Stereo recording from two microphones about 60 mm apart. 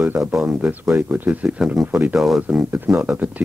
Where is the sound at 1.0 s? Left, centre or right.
Right.